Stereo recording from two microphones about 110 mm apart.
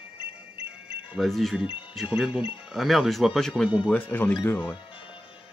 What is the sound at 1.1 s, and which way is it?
Speech, centre (ahead or behind).